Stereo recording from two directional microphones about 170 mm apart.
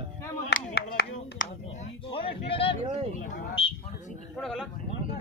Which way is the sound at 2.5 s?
35° left (ahead or behind).